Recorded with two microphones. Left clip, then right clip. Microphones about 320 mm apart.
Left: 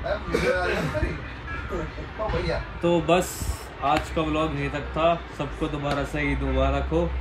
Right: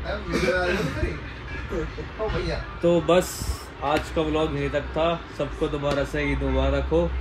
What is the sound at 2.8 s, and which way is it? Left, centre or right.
A man's voice, centre.